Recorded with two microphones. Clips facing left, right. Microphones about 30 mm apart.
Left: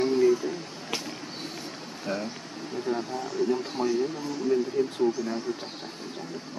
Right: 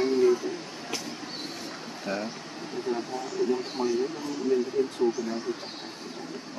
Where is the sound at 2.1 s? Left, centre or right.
Centre.